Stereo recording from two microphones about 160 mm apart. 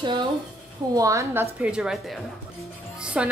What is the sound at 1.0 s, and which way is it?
Speech, 20° right (ahead or behind).